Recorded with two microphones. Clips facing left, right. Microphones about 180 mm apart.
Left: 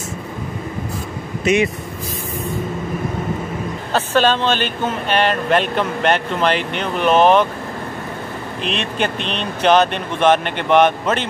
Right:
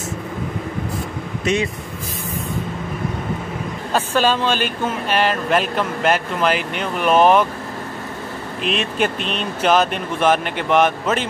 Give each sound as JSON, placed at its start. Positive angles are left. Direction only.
{"t": 1.4, "sound": "speech", "side_deg": 10}
{"t": 3.9, "sound": "speech", "side_deg": -10}
{"t": 8.6, "sound": "speech", "side_deg": -5}